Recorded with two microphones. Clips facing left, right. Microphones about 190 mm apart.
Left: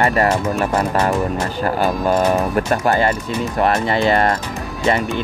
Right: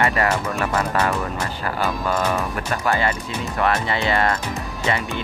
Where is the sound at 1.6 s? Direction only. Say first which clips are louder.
Left 6 dB; 40° left (ahead or behind).